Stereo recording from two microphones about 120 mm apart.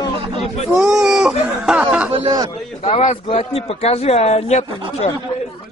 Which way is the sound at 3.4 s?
55° left (ahead or behind).